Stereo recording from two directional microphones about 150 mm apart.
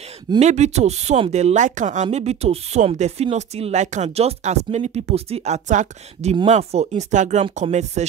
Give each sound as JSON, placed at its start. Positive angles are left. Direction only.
{"t": 0.4, "sound": "speech", "side_deg": -50}
{"t": 2.0, "sound": "speech", "side_deg": -45}